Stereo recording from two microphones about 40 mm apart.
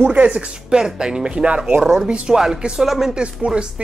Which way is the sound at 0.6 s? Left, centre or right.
Right.